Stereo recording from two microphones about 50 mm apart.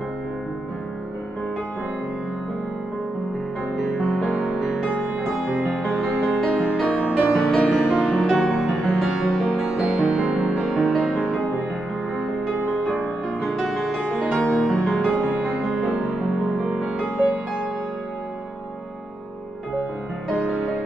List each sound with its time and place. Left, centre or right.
3.7 s music: centre
13.4 s music: centre
14.9 s music: centre
16.8 s music: right
20.3 s music: centre